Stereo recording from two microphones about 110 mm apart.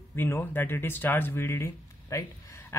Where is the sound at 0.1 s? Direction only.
20° left (ahead or behind).